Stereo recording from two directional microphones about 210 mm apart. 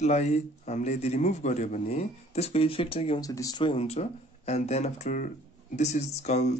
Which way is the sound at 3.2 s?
15° left (ahead or behind).